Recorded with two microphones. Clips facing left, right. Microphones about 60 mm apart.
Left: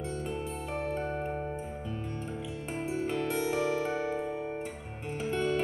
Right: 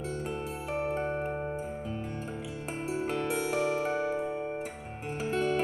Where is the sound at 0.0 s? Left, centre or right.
Centre.